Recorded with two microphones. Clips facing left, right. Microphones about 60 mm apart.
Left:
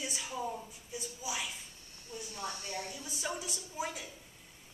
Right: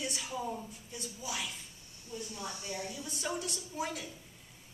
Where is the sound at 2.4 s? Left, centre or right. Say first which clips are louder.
Left 3 dB; centre.